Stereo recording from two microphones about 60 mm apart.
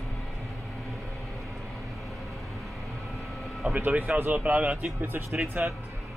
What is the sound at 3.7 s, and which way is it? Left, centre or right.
Speech, right.